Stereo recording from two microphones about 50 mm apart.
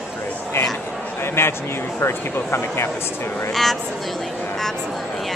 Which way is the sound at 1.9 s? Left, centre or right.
Left.